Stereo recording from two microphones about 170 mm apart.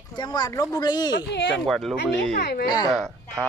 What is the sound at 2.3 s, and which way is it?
Speech, 60° left (ahead or behind).